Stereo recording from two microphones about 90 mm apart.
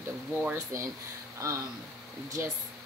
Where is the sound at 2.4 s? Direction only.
30° right (ahead or behind).